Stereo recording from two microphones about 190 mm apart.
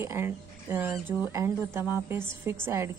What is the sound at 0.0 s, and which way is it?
Speech, 15° right (ahead or behind).